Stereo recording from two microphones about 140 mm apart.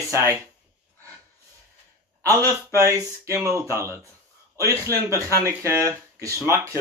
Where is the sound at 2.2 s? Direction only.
25° right (ahead or behind).